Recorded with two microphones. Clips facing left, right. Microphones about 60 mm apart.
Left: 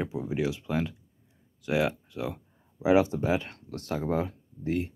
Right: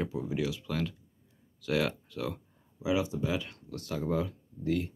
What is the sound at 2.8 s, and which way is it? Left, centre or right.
Speech, left.